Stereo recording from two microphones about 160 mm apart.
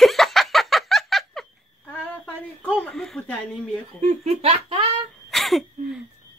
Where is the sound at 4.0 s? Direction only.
45° right (ahead or behind).